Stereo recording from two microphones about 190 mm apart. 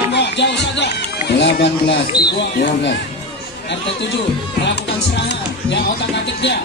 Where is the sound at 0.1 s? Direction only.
65° left (ahead or behind).